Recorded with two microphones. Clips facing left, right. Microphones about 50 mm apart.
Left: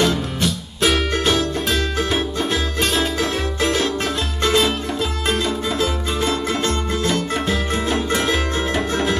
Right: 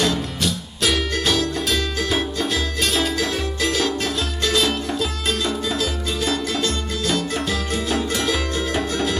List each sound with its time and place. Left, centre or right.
0.0 s music: left